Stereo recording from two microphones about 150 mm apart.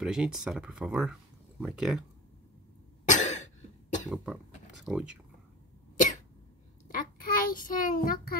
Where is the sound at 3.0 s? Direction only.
55° left (ahead or behind).